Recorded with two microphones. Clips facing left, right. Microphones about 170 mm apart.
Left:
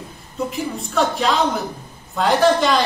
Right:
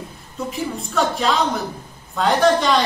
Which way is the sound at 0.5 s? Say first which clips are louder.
Even; centre (ahead or behind).